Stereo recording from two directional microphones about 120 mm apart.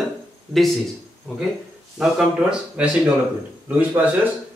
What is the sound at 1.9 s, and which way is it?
Speech, 5° right (ahead or behind).